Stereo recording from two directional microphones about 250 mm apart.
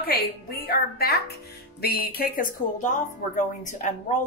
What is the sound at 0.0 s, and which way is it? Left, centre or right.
Speech, left.